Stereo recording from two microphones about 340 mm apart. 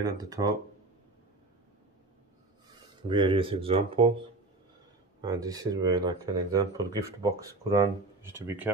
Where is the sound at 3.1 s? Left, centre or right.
Centre.